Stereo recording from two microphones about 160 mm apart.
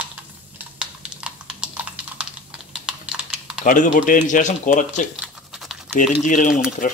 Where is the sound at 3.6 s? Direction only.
55° left (ahead or behind).